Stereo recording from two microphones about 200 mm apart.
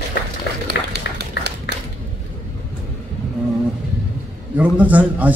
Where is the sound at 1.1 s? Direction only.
55° left (ahead or behind).